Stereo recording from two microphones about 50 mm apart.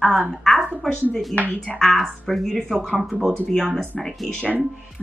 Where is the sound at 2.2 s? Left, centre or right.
Centre.